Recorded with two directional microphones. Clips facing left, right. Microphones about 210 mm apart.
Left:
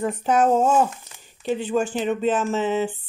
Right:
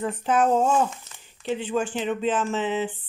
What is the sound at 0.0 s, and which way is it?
Speech, 45° left (ahead or behind).